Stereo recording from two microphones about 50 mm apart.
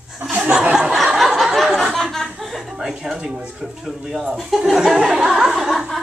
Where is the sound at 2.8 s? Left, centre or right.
Centre.